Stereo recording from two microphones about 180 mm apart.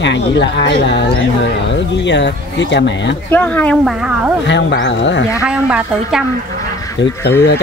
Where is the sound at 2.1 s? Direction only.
80° left.